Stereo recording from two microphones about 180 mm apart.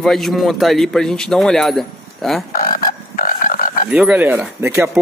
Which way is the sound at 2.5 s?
55° left (ahead or behind).